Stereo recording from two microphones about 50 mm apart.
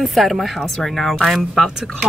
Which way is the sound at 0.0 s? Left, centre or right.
Centre.